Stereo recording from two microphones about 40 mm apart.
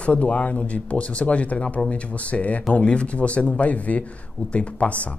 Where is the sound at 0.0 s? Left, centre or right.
Left.